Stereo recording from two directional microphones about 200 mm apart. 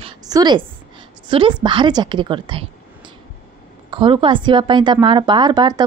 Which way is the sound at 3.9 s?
25° right (ahead or behind).